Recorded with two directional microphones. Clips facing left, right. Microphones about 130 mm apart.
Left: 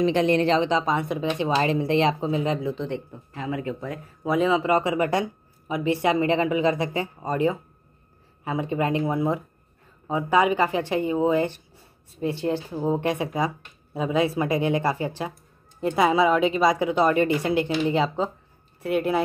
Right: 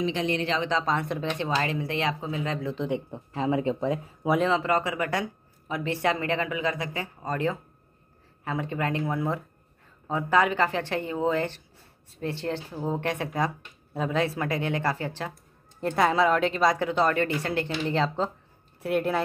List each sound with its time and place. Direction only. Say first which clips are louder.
0.0 s speech: left 7 dB; 55° left (ahead or behind)
0.7 s speech: left 3 dB; 15° left (ahead or behind)
1.5 s speech: left 8 dB; 25° left (ahead or behind)
3.1 s speech: right 4 dB; 30° right (ahead or behind)
4.4 s speech: left 6 dB; 10° left (ahead or behind)